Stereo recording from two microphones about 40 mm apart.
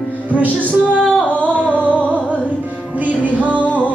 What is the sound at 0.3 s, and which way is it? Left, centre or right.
Music, right.